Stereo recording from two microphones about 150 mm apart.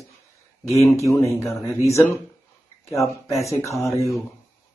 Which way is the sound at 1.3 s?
20° left (ahead or behind).